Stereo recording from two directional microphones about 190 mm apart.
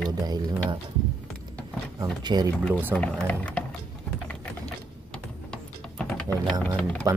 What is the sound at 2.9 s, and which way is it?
Speech, 5° left (ahead or behind).